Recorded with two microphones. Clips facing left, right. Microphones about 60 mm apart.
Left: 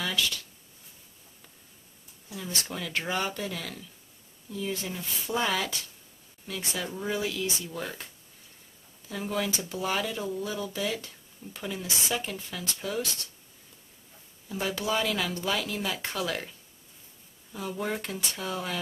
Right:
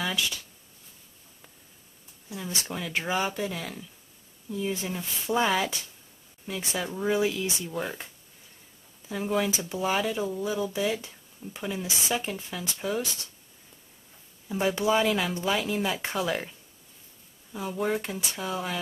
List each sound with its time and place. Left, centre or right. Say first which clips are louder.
0.1 s speech: even; centre
2.3 s speech: right 1 dB; centre
9.1 s speech: right 4 dB; centre
14.5 s speech: right 5 dB; right
17.5 s speech: right 4 dB; centre